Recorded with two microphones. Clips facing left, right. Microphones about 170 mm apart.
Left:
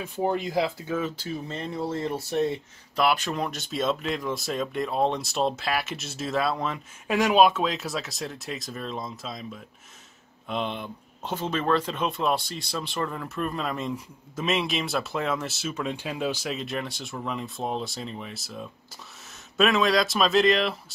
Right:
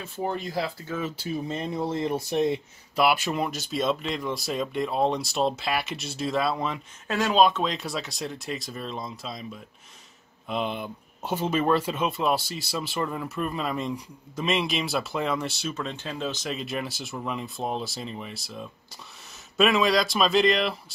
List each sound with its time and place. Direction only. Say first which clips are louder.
0.5 s speech: left 4 dB; 15° left (ahead or behind)
0.9 s speech: right 3 dB; 5° right (ahead or behind)
7.1 s speech: left 2 dB; 15° left (ahead or behind)